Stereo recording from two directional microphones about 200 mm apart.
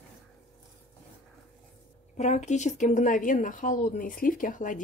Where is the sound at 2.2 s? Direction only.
35° left (ahead or behind).